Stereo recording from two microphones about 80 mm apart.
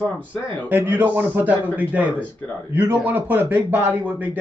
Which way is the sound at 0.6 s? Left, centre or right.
Right.